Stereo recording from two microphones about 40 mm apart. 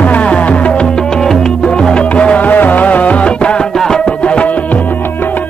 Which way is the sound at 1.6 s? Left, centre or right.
Left.